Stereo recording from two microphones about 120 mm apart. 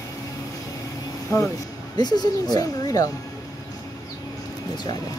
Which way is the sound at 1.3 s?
30° left (ahead or behind).